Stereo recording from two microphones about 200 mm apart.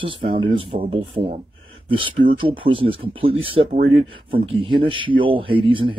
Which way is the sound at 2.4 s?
25° right (ahead or behind).